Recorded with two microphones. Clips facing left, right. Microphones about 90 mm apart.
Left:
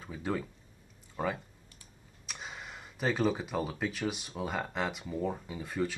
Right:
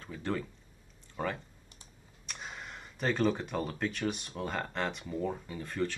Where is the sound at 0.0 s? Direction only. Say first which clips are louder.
Left 1 dB; 5° left (ahead or behind).